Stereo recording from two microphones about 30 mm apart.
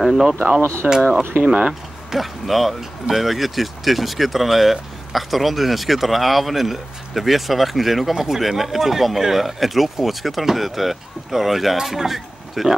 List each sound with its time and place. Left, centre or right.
0.1 s speech: centre
1.7 s speech: centre